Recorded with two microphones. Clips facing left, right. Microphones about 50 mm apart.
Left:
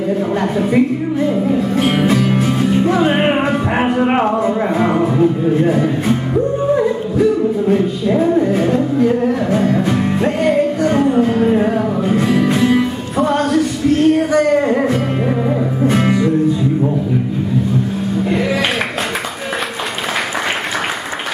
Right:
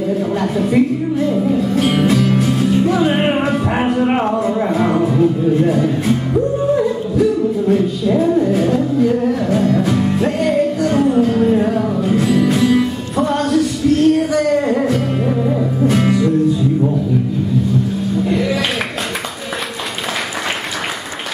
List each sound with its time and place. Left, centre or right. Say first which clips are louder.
0.4 s music: even; centre
18.3 s music: left 2 dB; centre